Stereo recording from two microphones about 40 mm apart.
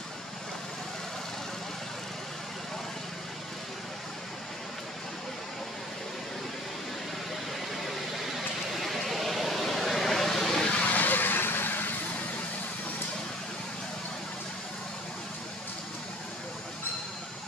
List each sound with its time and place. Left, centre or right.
8.4 s vehicle: centre
10.9 s vehicle: left